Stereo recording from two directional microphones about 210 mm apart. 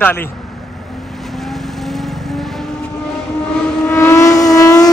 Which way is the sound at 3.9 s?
10° left (ahead or behind).